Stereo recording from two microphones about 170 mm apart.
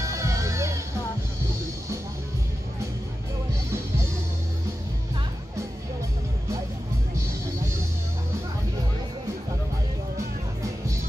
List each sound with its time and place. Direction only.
0.0 s music: 20° right (ahead or behind)